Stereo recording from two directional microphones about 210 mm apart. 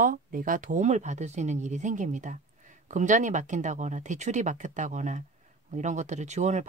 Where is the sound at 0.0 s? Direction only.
40° right (ahead or behind).